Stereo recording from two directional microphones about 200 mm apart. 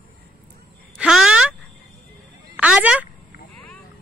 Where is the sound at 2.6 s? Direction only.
5° right (ahead or behind).